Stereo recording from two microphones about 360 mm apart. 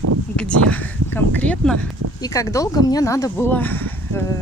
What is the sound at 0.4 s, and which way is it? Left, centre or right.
Speech, centre.